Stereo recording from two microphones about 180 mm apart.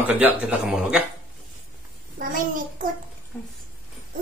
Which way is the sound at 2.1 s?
50° right (ahead or behind).